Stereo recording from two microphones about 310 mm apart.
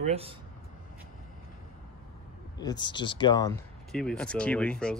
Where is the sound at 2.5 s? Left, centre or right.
Centre.